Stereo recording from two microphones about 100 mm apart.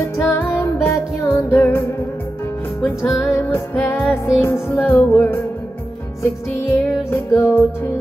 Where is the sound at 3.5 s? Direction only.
20° left (ahead or behind).